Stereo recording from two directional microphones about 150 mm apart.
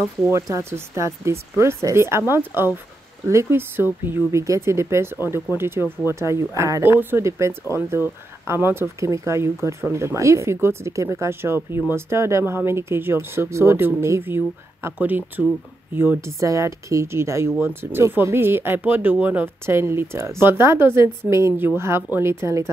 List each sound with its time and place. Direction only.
0.3 s a woman's voice: 20° right (ahead or behind)